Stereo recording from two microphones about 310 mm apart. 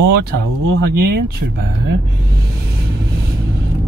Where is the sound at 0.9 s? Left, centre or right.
Right.